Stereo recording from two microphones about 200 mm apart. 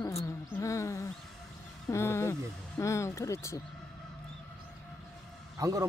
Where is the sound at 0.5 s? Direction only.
15° left (ahead or behind).